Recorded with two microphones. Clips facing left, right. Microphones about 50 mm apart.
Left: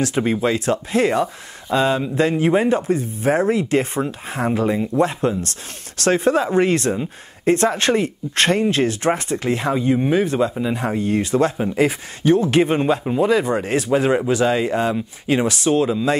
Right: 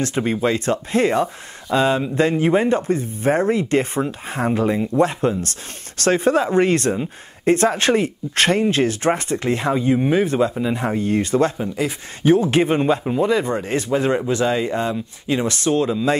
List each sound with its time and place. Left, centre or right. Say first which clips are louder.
0.0 s speech: left 1 dB; centre
11.5 s speech: left 5 dB; left
12.4 s speech: even; centre